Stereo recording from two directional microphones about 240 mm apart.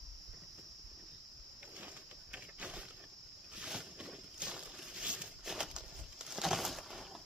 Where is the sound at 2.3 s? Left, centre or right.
Centre.